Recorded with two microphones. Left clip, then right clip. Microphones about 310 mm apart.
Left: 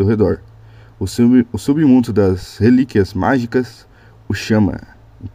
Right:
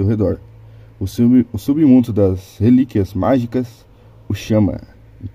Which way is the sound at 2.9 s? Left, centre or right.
Centre.